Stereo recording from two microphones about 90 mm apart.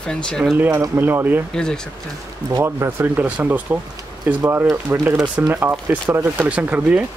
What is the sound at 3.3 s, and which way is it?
Speech, 15° right (ahead or behind).